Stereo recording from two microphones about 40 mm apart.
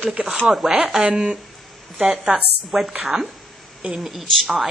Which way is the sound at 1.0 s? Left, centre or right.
Right.